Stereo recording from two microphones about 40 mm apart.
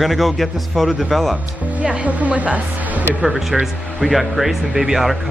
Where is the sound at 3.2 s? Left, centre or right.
Centre.